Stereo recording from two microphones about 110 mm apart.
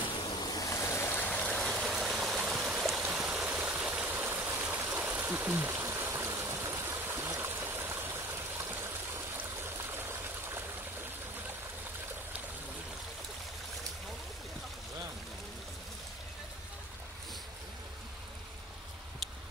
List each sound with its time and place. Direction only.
0.2 s stream: 40° left (ahead or behind); by 10.6 s 20° right (ahead or behind)